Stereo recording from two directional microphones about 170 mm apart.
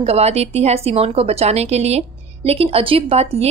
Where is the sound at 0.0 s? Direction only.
35° right (ahead or behind).